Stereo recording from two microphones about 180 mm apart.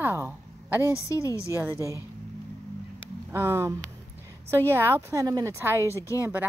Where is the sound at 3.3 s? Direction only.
15° right (ahead or behind).